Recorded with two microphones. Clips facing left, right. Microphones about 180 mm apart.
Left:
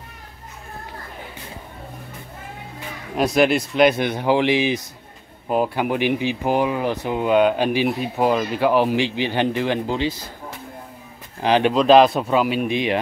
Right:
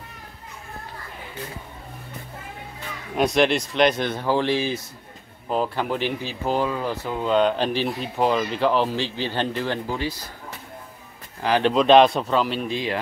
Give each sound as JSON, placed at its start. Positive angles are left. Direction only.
{"t": 3.2, "sound": "speech", "side_deg": 5}
{"t": 11.4, "sound": "speech", "side_deg": 20}
{"t": 11.7, "sound": "speech", "side_deg": 0}